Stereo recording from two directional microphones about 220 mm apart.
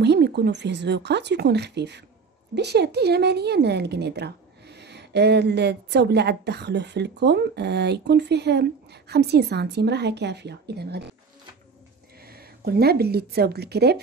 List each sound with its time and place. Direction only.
0.0 s a woman's voice: 50° right (ahead or behind)
12.2 s speech: 45° right (ahead or behind)